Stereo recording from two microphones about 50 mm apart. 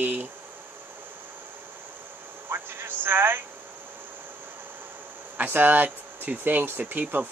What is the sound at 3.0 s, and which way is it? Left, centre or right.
Speech, right.